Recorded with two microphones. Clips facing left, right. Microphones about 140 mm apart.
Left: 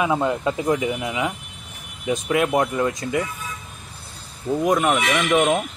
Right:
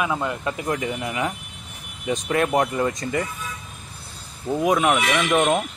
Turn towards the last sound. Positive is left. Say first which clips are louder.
# left 1 dB
turn(degrees=0)  # may be behind; listen again after turning